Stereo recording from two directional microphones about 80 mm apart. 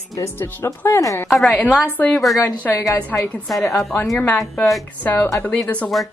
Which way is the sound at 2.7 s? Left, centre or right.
Centre.